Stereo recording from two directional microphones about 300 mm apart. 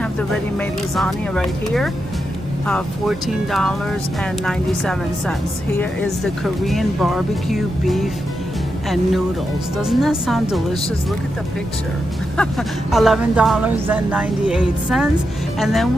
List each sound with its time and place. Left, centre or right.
0.6 s speech: centre
12.4 s speech: centre